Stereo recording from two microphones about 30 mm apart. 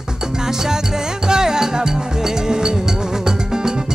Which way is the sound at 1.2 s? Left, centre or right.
Right.